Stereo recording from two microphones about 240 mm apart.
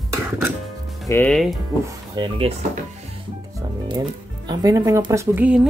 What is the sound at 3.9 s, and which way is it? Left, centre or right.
Speech, centre.